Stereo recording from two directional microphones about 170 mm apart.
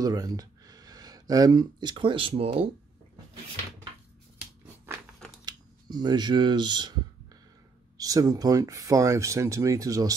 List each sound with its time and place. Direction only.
0.0 s speech: 20° right (ahead or behind); by 2.7 s 35° right (ahead or behind)
5.4 s speech: 25° right (ahead or behind)
8.0 s speech: 20° right (ahead or behind)